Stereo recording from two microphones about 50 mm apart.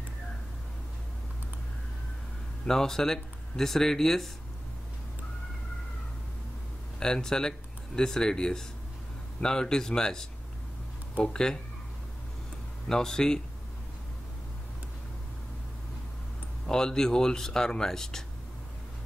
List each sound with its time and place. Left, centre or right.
2.6 s speech: centre
7.0 s speech: centre
11.2 s speech: centre
12.8 s speech: centre
16.6 s speech: centre